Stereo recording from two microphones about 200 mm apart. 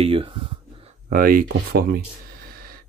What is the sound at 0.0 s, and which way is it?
Speech, 30° right (ahead or behind).